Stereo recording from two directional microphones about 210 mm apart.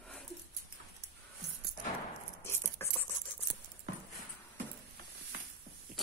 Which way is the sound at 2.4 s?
10° left (ahead or behind).